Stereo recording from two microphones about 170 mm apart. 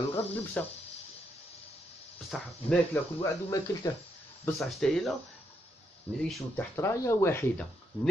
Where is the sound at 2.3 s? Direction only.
Centre (ahead or behind).